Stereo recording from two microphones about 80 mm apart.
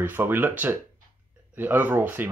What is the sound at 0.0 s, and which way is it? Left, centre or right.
Speech, right.